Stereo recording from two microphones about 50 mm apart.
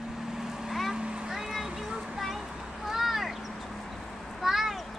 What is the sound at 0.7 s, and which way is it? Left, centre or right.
Boat, centre.